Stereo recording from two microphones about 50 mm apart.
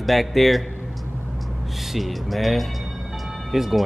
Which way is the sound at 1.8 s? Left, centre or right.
Centre.